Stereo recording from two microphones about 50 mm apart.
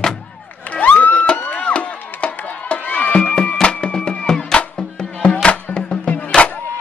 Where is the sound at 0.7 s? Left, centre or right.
Left.